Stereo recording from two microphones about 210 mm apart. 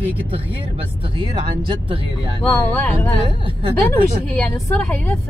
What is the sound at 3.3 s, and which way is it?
Speech, 25° right (ahead or behind).